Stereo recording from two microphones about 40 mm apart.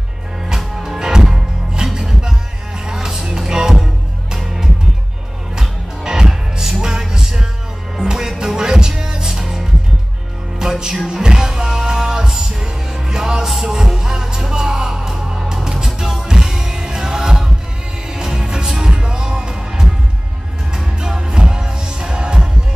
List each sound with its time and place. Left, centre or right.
0.6 s music: centre
0.9 s music: centre
21.3 s music: centre